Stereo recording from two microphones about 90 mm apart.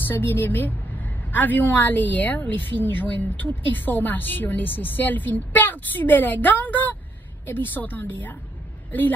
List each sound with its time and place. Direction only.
0.1 s a woman's voice: 25° left (ahead or behind)